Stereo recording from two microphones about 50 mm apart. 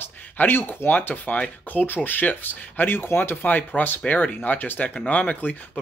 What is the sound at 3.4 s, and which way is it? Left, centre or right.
Speech, left.